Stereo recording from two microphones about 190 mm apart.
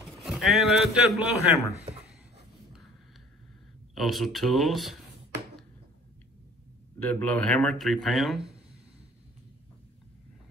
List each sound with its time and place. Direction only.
0.2 s a man's voice: centre (ahead or behind)
3.9 s speech: centre (ahead or behind)
7.1 s speech: 10° left (ahead or behind)